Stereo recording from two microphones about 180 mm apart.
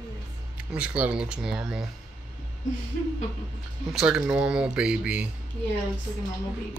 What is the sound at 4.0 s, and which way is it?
Speech, 5° right (ahead or behind).